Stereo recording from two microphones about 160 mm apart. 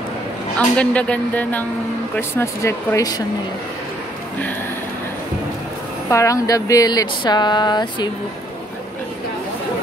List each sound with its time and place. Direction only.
0.6 s speech: 5° left (ahead or behind)
6.0 s speech: 20° left (ahead or behind)